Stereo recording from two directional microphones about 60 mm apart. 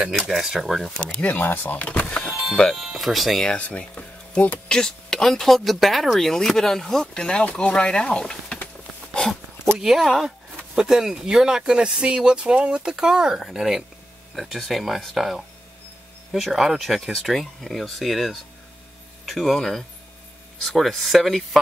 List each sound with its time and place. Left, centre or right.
0.0 s speech: centre
0.8 s speech: centre
1.4 s speech: left
2.7 s speech: centre
3.4 s speech: left
9.8 s speech: centre
10.8 s speech: centre